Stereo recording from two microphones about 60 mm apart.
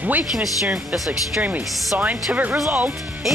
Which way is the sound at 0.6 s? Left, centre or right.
Centre.